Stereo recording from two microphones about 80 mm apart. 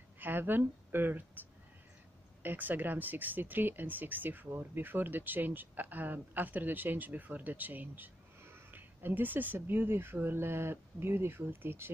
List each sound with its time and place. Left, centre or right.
0.2 s speech: right
2.4 s speech: right